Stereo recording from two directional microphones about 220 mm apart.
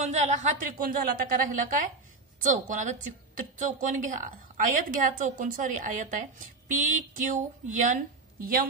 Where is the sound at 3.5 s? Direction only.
35° right (ahead or behind).